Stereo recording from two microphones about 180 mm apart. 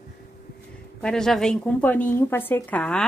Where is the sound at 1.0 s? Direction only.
5° left (ahead or behind).